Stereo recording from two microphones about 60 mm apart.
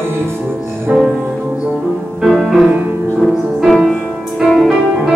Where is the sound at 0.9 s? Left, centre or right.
Centre.